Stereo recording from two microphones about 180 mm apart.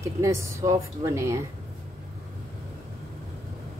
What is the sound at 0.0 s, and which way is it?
Speech, 15° right (ahead or behind).